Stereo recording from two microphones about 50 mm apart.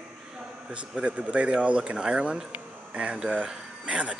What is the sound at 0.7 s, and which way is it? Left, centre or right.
Speech, right.